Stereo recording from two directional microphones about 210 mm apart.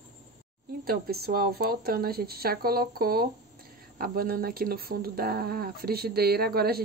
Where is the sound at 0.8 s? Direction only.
45° right (ahead or behind).